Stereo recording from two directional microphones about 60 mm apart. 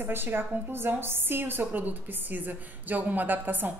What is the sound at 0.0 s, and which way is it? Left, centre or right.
A woman's voice, right.